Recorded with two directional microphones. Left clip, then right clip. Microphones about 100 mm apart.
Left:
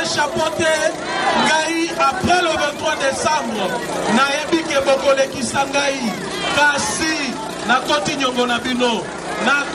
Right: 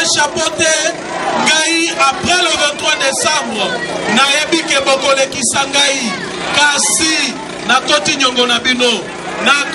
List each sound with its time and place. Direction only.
0.0 s a man's voice: 25° right (ahead or behind)